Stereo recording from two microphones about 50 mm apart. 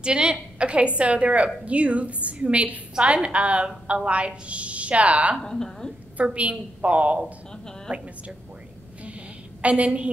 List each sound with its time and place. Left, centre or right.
0.0 s a woman's voice: centre
5.4 s a woman's voice: centre
6.1 s a woman's voice: right
9.6 s a woman's voice: right